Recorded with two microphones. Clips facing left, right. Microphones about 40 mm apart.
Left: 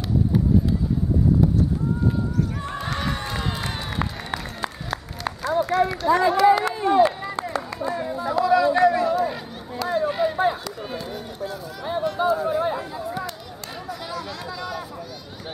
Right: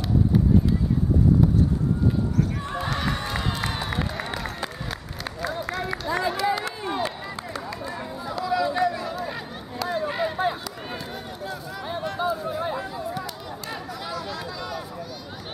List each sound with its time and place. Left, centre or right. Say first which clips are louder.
2.6 s applause: even; centre
5.4 s run: left 9 dB; centre
8.1 s a sound: left 9 dB; centre
8.5 s run: left 3 dB; centre
9.0 s run: left 8 dB; centre
11.4 s chatter: left 3 dB; centre
14.1 s a sound: right 1 dB; centre